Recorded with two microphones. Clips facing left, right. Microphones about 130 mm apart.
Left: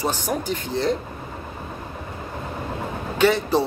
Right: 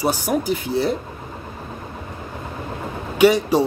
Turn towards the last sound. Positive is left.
turn(degrees=-15)  # may be behind; listen again after turning